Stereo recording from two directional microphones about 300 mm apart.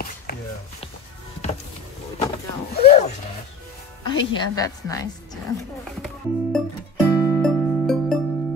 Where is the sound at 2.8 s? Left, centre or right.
Left.